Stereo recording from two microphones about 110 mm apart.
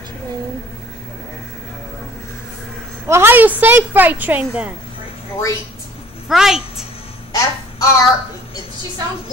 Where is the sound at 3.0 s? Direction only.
20° right (ahead or behind).